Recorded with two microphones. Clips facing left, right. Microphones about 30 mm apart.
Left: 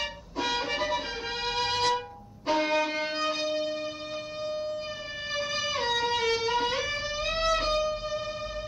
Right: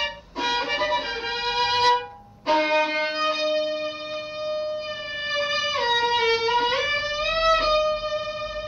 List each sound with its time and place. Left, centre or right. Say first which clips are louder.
0.0 s music: right 5 dB; right
4.5 s siren: right 5 dB; right
5.3 s music: right 6 dB; right